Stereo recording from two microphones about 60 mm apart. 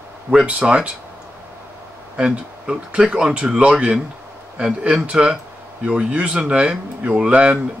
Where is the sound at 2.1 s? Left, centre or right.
Centre.